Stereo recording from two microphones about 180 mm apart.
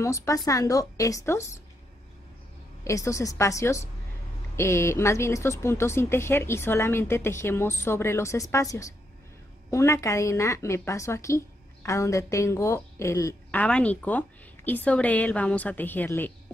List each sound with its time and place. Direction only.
0.0 s a woman's voice: 15° left (ahead or behind)
2.8 s a woman's voice: 15° left (ahead or behind)